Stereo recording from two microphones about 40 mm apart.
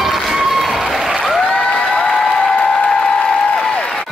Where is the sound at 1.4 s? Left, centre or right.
Centre.